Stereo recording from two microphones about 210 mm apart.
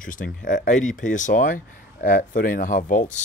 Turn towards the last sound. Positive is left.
turn(degrees=40)  # may be behind; listen again after turning